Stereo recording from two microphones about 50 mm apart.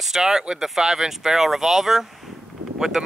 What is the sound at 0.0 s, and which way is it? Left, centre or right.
Speech, centre.